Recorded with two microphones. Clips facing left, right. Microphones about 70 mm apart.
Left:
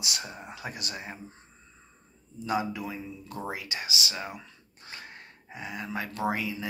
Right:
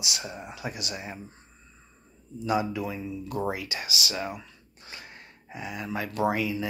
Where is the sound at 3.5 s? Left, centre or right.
Left.